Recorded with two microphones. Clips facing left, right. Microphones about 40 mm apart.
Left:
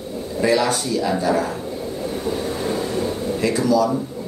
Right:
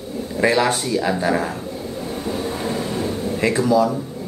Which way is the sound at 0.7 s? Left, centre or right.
Right.